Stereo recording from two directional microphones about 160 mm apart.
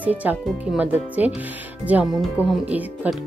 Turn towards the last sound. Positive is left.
turn(degrees=-10)  # may be behind; listen again after turning